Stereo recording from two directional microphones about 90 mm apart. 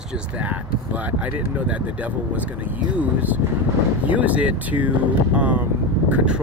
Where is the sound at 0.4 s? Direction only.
15° right (ahead or behind).